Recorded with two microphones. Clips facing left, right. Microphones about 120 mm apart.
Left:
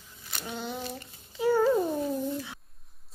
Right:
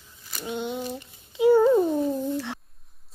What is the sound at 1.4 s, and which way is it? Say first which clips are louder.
Babbling: right 7 dB; 20° right (ahead or behind).